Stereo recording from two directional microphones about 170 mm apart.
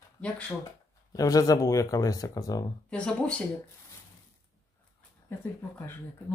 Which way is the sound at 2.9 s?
5° left (ahead or behind).